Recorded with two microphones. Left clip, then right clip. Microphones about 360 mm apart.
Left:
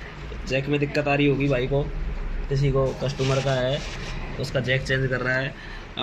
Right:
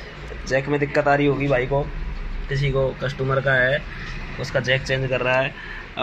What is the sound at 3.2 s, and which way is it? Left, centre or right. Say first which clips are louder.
Speech: right 6 dB; right.